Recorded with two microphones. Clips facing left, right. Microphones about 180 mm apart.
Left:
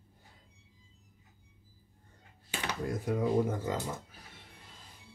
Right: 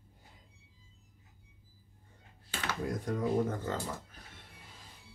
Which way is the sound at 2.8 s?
5° left (ahead or behind).